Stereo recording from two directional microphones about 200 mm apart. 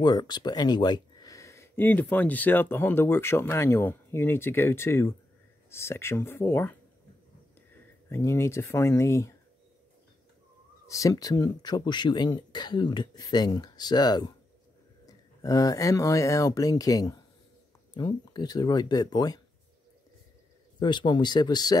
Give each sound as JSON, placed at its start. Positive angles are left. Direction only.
{"t": 0.0, "sound": "speech", "side_deg": 20}
{"t": 8.1, "sound": "speech", "side_deg": 15}
{"t": 10.9, "sound": "speech", "side_deg": 15}
{"t": 20.8, "sound": "speech", "side_deg": 20}